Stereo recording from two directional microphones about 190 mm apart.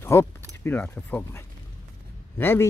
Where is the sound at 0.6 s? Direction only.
10° left (ahead or behind).